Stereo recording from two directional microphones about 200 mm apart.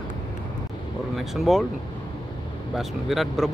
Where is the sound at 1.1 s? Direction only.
Centre (ahead or behind).